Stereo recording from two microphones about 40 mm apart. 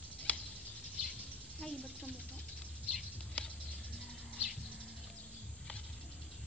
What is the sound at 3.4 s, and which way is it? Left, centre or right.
Patter, left.